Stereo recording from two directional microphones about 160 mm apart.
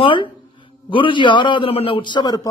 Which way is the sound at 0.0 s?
30° left (ahead or behind).